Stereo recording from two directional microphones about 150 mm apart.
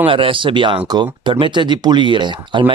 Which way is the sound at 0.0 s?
35° right (ahead or behind).